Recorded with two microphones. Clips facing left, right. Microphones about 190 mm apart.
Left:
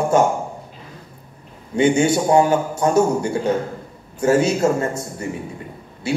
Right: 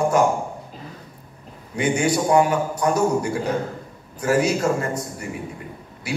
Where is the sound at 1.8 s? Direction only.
25° left (ahead or behind).